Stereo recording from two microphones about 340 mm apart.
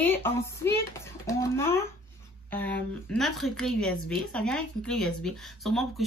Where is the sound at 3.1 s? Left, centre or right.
Centre.